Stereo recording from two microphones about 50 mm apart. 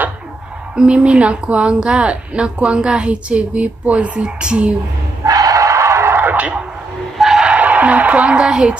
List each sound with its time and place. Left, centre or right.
0.7 s a woman's voice: right
5.6 s music: right
6.3 s bow-wow: right
7.2 s a sound: centre
7.4 s a sound: right
8.4 s a woman's voice: centre